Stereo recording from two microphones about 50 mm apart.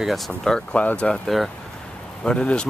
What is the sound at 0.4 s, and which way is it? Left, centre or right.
Speech, centre.